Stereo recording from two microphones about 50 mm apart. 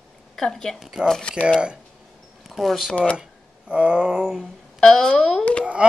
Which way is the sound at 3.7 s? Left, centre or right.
Right.